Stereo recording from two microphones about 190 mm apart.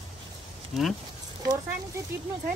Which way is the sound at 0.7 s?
Centre (ahead or behind).